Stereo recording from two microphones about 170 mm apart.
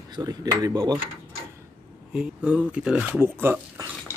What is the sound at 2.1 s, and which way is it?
Speech, 5° right (ahead or behind).